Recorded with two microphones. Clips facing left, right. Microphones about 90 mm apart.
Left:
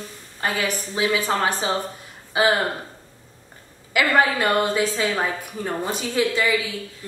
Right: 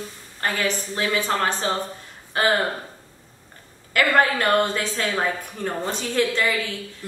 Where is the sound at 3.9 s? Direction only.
5° left (ahead or behind).